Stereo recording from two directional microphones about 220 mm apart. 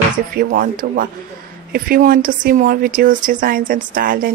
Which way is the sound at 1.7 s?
40° right (ahead or behind).